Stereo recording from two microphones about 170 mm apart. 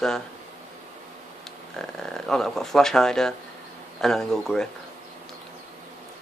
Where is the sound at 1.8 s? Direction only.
5° left (ahead or behind).